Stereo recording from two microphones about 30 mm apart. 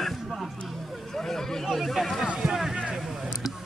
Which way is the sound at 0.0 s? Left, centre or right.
Centre.